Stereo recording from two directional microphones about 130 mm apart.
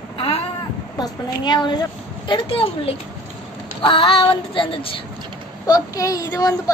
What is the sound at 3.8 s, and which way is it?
Child singing, 45° left (ahead or behind).